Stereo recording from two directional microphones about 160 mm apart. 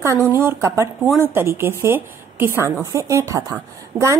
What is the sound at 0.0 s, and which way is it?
A woman's voice, 20° right (ahead or behind).